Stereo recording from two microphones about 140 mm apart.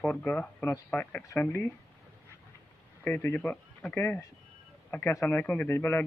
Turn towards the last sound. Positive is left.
turn(degrees=15)  # may be behind; listen again after turning